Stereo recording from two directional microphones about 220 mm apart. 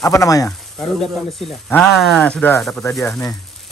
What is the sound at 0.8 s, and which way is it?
Speech, centre (ahead or behind).